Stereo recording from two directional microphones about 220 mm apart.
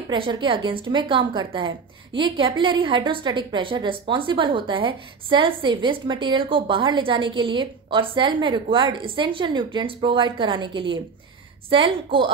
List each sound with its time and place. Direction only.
0.1 s a woman's voice: 20° right (ahead or behind)